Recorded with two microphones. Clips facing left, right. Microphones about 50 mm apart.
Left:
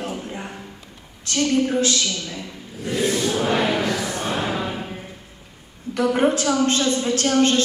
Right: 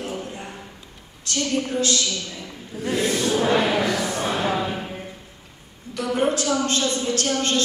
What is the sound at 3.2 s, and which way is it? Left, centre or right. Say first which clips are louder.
Music: right 1 dB; centre.